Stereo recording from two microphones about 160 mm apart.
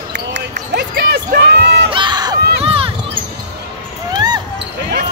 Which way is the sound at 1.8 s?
30° right (ahead or behind).